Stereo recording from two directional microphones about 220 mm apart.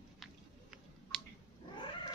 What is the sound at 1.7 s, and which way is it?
Cat, 20° left (ahead or behind).